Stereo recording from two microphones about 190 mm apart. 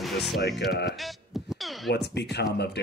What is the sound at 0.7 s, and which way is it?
Speech, 60° left (ahead or behind).